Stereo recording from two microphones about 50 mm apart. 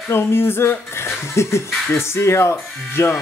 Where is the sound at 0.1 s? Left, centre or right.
Left.